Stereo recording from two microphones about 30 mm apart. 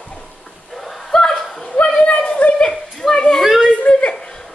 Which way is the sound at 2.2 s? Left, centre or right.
Left.